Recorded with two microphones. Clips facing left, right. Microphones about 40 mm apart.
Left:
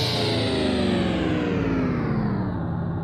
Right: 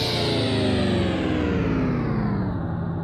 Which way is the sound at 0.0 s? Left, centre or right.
Centre.